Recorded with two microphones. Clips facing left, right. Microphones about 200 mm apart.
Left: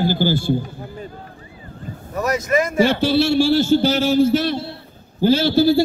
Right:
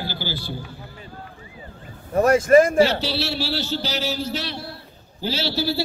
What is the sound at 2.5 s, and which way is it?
Speech, 40° right (ahead or behind).